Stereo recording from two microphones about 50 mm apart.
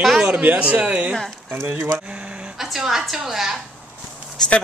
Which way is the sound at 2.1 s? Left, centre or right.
Right.